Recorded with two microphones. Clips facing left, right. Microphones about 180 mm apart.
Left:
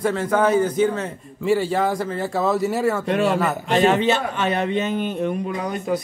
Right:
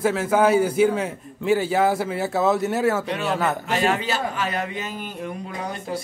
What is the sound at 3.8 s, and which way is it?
A man's voice, 25° left (ahead or behind).